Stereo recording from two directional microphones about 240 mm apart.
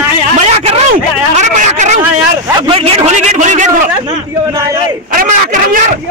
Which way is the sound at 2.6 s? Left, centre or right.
Right.